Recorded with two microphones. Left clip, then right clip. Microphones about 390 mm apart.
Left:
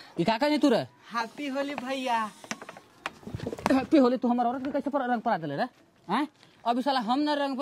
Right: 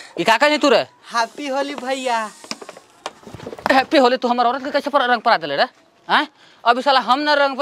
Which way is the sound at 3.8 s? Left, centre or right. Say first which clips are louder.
Right 9 dB; right.